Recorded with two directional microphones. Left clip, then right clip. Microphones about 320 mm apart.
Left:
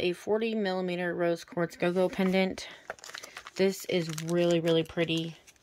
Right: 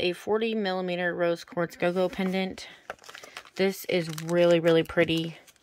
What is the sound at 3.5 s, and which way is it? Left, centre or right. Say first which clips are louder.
Speech: right 2 dB; centre.